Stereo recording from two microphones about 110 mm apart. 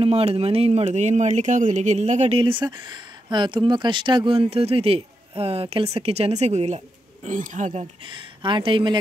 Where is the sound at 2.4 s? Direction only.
50° right (ahead or behind); by 7.8 s 90° right.